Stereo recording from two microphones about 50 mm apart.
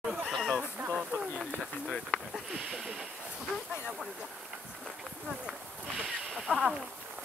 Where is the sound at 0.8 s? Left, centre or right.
Right.